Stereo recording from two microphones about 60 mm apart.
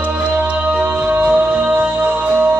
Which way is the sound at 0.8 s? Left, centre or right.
Right.